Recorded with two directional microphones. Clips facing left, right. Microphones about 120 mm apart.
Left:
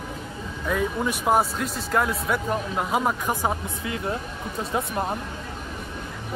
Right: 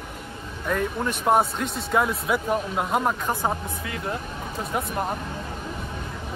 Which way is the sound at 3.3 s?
15° left (ahead or behind).